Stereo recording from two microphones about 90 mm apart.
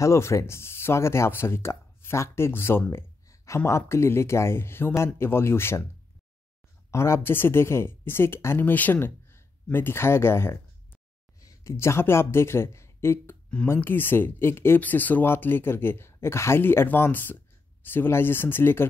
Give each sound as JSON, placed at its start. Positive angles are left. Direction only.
{"t": 0.0, "sound": "speech", "side_deg": 35}
{"t": 6.9, "sound": "speech", "side_deg": 30}